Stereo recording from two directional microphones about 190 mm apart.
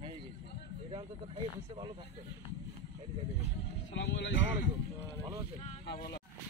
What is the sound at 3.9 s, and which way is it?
Speech, 65° left (ahead or behind).